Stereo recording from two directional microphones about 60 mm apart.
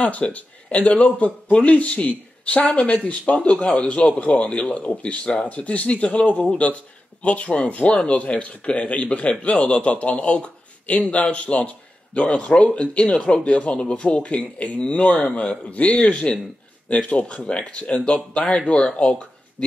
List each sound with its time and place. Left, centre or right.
0.0 s a man's voice: left